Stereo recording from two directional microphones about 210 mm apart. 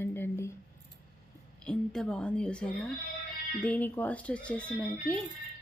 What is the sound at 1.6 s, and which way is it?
A woman's voice, 5° left (ahead or behind).